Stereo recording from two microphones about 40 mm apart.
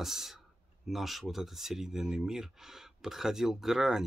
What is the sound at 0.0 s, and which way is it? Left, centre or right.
Speech, centre.